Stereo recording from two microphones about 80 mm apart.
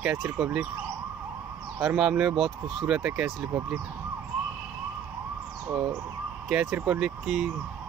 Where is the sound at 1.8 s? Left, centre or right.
Centre.